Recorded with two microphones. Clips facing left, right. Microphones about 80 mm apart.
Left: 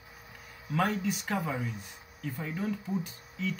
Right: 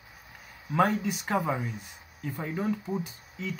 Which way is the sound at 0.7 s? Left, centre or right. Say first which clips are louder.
Right 4 dB; centre.